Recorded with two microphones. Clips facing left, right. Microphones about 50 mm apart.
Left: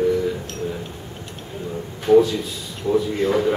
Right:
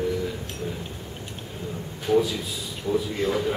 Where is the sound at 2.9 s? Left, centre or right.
Centre.